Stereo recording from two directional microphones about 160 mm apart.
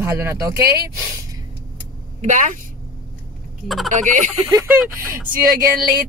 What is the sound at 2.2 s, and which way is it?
Fowl, 50° right (ahead or behind).